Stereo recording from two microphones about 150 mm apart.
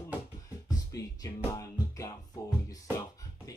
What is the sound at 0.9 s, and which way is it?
Music, 20° left (ahead or behind).